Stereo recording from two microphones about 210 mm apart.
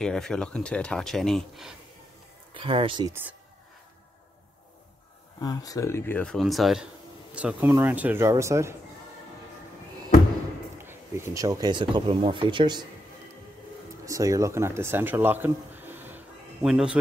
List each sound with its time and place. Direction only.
0.0 s speech: 5° left (ahead or behind)
2.5 s speech: 25° right (ahead or behind)
3.1 s speech: 10° right (ahead or behind)
5.4 s speech: 20° left (ahead or behind); by 8.7 s 15° right (ahead or behind)
10.8 s speech: 10° right (ahead or behind)
14.0 s a man's voice: 15° right (ahead or behind)